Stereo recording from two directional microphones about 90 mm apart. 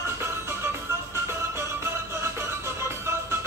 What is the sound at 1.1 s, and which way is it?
Music, 30° right (ahead or behind).